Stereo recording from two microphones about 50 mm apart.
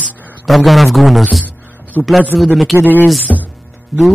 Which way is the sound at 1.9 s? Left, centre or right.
Left.